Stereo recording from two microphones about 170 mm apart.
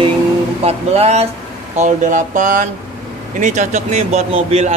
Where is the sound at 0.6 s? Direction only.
40° right (ahead or behind).